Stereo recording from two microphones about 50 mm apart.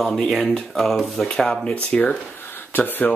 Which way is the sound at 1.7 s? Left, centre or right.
Left.